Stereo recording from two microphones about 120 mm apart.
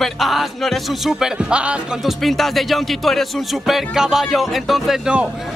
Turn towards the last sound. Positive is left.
turn(degrees=-5)  # may be behind; listen again after turning